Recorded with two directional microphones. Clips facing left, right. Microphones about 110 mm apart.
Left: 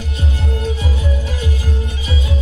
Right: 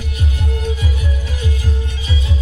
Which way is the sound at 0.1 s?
30° left (ahead or behind).